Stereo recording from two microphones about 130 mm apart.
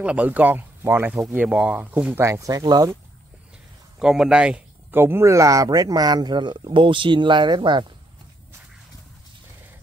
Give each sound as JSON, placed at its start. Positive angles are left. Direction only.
{"t": 0.0, "sound": "speech", "side_deg": -10}
{"t": 2.2, "sound": "speech", "side_deg": -25}
{"t": 4.0, "sound": "speech", "side_deg": -5}
{"t": 5.0, "sound": "speech", "side_deg": -20}